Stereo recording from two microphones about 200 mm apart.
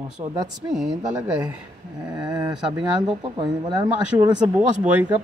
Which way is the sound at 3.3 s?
25° right (ahead or behind).